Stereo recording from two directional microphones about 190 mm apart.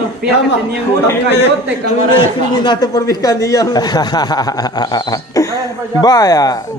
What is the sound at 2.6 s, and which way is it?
A man's voice, 20° left (ahead or behind).